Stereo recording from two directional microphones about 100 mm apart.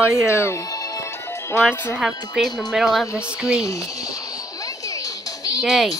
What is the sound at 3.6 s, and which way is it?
Speech, 35° left (ahead or behind).